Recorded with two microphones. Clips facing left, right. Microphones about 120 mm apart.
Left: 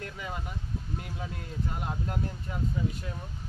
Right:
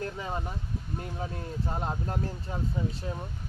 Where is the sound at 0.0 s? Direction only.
30° right (ahead or behind).